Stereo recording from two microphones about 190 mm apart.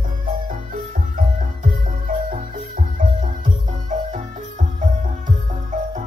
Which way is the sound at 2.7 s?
45° right (ahead or behind).